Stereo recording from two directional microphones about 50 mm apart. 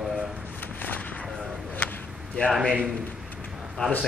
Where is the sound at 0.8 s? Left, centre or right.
Left.